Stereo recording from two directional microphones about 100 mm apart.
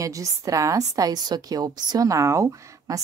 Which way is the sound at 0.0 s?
35° right (ahead or behind).